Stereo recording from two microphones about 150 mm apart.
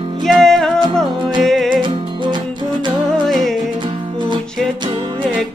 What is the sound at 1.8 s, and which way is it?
Music, 30° right (ahead or behind).